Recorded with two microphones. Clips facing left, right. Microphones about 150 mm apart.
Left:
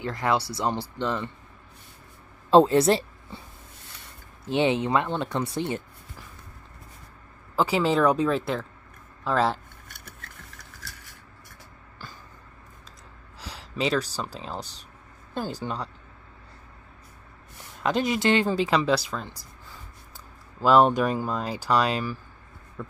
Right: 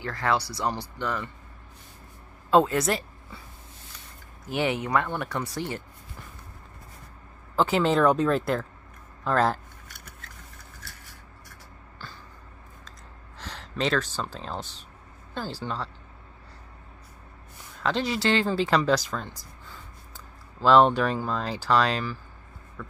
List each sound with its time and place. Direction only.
0.0 s speech: 20° left (ahead or behind)
2.5 s a woman's voice: 30° left (ahead or behind)
4.5 s speech: 25° left (ahead or behind)
7.5 s speech: 5° left (ahead or behind)
10.7 s a sound: 90° left
13.4 s a sound: 10° left (ahead or behind)
14.1 s speech: 10° left (ahead or behind)
17.8 s speech: 15° left (ahead or behind)
18.7 s speech: 5° left (ahead or behind)
20.6 s speech: 10° left (ahead or behind)
22.8 s a sound: 25° left (ahead or behind)